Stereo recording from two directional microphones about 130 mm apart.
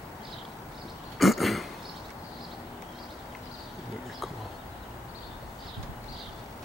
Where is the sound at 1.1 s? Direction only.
Centre (ahead or behind).